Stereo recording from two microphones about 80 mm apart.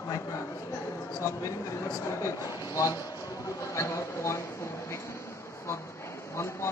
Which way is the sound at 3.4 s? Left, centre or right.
Left.